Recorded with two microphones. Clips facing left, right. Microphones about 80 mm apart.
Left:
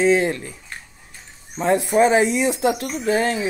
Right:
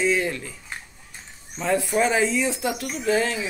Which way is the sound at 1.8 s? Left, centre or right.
Left.